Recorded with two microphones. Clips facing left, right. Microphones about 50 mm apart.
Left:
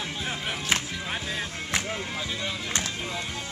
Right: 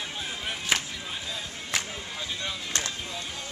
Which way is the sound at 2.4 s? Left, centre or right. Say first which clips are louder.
Left 2 dB; centre.